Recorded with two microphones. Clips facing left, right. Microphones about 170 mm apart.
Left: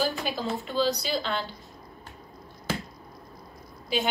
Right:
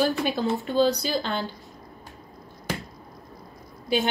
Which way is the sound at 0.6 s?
50° right (ahead or behind).